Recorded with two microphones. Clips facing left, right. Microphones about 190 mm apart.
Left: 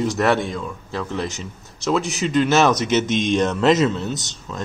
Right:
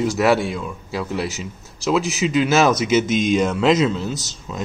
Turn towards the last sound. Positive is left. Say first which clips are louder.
# even
turn(degrees=0)  # may be behind; listen again after turning